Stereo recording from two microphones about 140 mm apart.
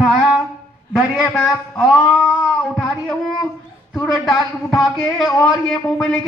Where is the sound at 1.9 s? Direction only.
Centre (ahead or behind).